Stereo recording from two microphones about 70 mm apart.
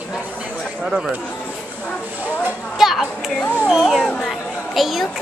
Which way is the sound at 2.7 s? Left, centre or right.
Centre.